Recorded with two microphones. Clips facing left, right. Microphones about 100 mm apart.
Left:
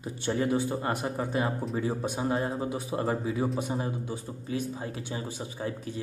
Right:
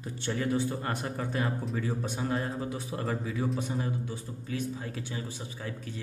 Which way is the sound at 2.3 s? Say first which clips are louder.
Left 3 dB; 30° left (ahead or behind).